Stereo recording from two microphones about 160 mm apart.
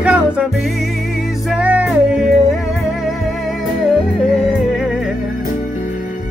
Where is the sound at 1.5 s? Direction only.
5° right (ahead or behind).